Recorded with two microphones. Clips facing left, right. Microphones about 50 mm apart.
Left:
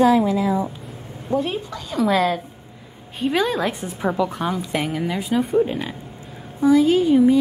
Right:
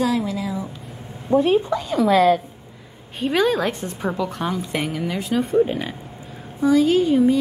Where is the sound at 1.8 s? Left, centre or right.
Centre.